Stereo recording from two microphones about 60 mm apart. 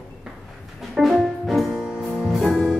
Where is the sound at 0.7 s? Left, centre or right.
Centre.